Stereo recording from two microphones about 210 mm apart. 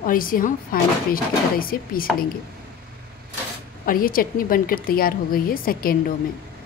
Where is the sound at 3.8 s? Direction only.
45° left (ahead or behind).